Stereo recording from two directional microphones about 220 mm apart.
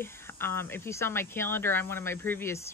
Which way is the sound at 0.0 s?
10° left (ahead or behind).